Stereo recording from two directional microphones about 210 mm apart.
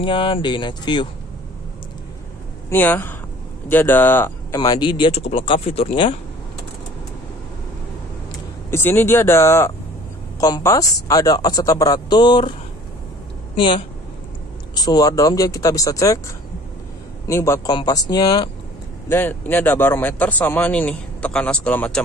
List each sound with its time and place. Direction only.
0.0 s speech: 25° left (ahead or behind)
2.7 s speech: 10° left (ahead or behind)
4.6 s speech: 20° left (ahead or behind)
8.6 s speech: 10° left (ahead or behind)
13.6 s speech: 25° left (ahead or behind)
17.3 s speech: 15° left (ahead or behind)